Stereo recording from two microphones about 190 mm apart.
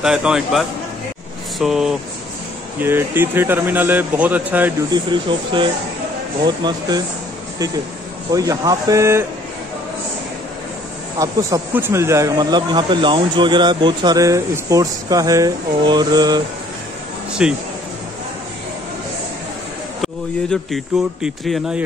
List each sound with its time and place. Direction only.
0.0 s a man's voice: 5° right (ahead or behind)
5.3 s speech: 25° right (ahead or behind)
8.3 s speech: 20° right (ahead or behind)
11.1 s speech: 15° right (ahead or behind)
17.4 s a man's voice: 5° right (ahead or behind)
20.0 s a man's voice: centre (ahead or behind)